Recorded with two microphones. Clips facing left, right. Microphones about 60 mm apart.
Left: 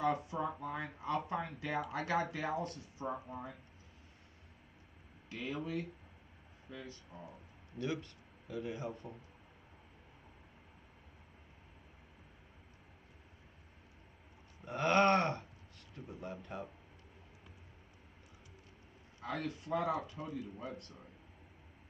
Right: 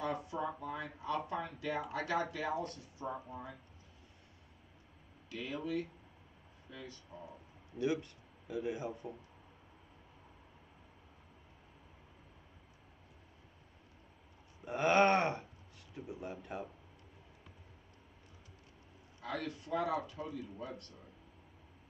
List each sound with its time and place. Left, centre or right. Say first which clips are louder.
0.0 s speech: left 3 dB; left
5.3 s speech: right 1 dB; left
7.1 s speech: right 2 dB; left
7.8 s speech: right 4 dB; centre
14.6 s a sound: right 1 dB; centre
19.2 s speech: left 1 dB; left